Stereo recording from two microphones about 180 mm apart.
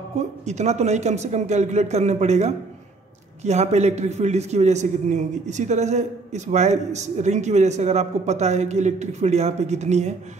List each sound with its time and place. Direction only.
0.5 s a man's voice: 40° right (ahead or behind)